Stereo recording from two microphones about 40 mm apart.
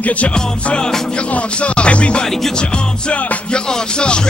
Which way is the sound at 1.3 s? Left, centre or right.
Left.